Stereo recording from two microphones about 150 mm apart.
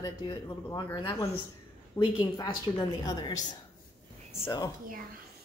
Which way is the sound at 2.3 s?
25° left (ahead or behind).